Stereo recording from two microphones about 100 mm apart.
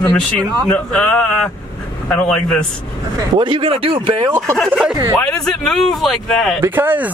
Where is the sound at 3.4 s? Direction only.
60° right (ahead or behind).